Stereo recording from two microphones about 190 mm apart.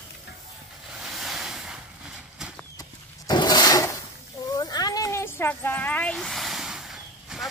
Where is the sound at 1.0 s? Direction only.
Centre (ahead or behind).